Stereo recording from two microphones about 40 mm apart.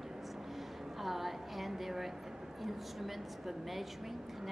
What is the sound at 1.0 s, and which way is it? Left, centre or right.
A woman's voice, centre.